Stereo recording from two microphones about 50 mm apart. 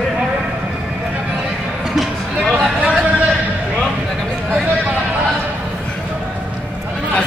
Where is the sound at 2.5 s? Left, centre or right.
Right.